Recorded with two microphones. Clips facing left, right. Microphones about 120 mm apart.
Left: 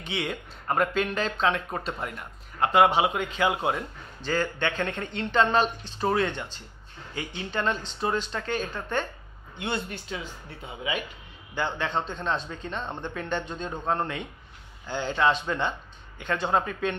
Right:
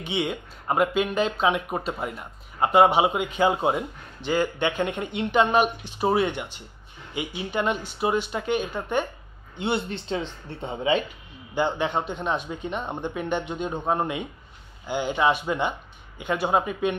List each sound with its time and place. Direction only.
0.3 s a man's voice: 10° right (ahead or behind)
2.6 s a man's voice: 20° right (ahead or behind)